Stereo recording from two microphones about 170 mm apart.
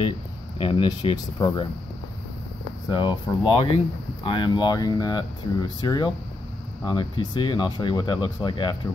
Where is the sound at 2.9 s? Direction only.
25° left (ahead or behind).